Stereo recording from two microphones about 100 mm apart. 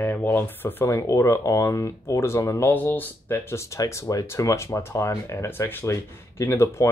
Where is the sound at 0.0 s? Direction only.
20° left (ahead or behind).